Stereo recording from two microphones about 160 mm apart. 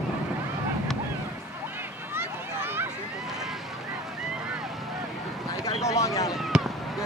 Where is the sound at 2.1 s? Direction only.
15° right (ahead or behind).